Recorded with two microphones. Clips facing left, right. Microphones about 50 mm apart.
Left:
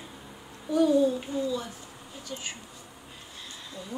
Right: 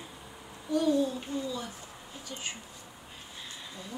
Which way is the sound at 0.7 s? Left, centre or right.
Centre.